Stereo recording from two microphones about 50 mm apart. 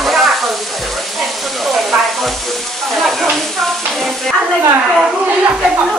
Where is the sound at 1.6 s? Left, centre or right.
Centre.